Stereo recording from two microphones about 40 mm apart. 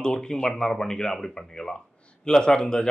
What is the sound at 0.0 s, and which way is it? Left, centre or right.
Speech, centre.